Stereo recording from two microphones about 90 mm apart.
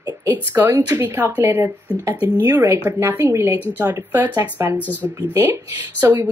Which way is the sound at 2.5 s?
45° right (ahead or behind).